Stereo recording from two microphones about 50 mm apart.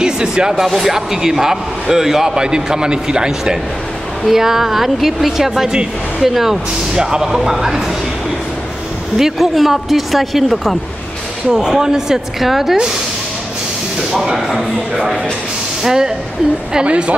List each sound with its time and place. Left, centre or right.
0.0 s speech: centre
0.7 s a man's voice: centre
9.2 s speech: centre
11.5 s a man's voice: centre
14.2 s speech: centre
15.8 s speech: centre
16.7 s a woman's voice: right